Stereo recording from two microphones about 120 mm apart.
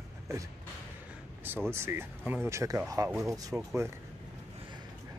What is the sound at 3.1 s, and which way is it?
Speech, centre (ahead or behind).